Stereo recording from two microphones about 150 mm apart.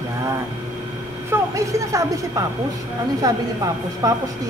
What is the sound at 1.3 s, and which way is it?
A woman's voice, 20° right (ahead or behind).